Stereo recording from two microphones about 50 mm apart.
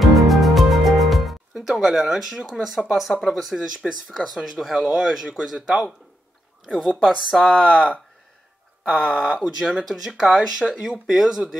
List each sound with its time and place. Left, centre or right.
0.0 s music: centre
1.5 s speech: centre
8.8 s speech: right
9.8 s speech: centre